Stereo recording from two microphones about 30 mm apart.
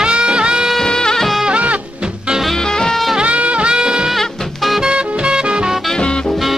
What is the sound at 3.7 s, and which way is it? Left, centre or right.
Music, right.